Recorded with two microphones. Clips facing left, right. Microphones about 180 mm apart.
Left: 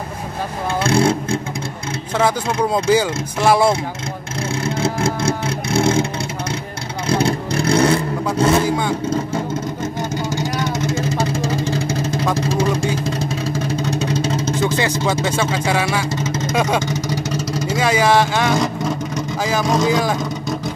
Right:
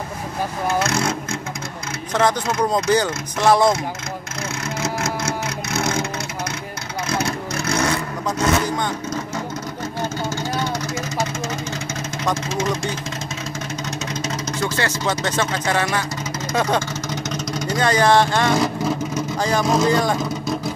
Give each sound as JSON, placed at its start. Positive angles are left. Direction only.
{"t": 0.7, "sound": "speech", "side_deg": 30}
{"t": 2.1, "sound": "speech", "side_deg": 5}
{"t": 4.6, "sound": "vehicle", "side_deg": 30}
{"t": 7.1, "sound": "vehicle", "side_deg": 30}
{"t": 8.6, "sound": "vehicle", "side_deg": 5}
{"t": 10.3, "sound": "vehicle", "side_deg": 20}
{"t": 12.4, "sound": "speech", "side_deg": 35}
{"t": 13.7, "sound": "a sound", "side_deg": 30}
{"t": 14.6, "sound": "speech", "side_deg": 10}
{"t": 16.8, "sound": "vehicle", "side_deg": 10}